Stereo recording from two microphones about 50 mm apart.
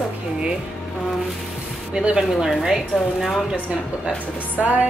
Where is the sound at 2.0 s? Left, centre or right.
Centre.